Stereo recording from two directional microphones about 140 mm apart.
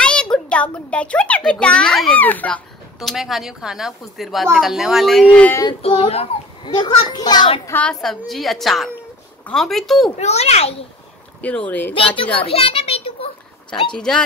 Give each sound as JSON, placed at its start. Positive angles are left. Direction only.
{"t": 0.0, "sound": "a child's voice", "side_deg": 5}
{"t": 5.7, "sound": "a child's voice", "side_deg": 45}
{"t": 7.6, "sound": "speech", "side_deg": 15}
{"t": 7.9, "sound": "a child's voice", "side_deg": 0}
{"t": 10.1, "sound": "a child's voice", "side_deg": 50}
{"t": 11.4, "sound": "speech", "side_deg": 10}
{"t": 11.9, "sound": "a child's voice", "side_deg": 40}
{"t": 12.4, "sound": "a sound", "side_deg": 45}
{"t": 13.9, "sound": "a child's voice", "side_deg": 5}